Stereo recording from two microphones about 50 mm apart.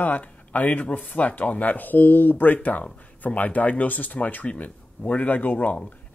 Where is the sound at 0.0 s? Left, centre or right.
Left.